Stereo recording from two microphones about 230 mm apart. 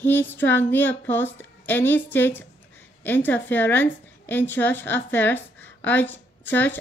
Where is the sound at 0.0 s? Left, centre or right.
Centre.